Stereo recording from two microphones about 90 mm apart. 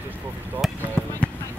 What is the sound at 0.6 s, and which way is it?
Basketball bounce, 5° right (ahead or behind).